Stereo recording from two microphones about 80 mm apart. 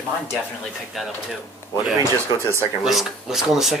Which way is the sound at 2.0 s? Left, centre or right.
Left.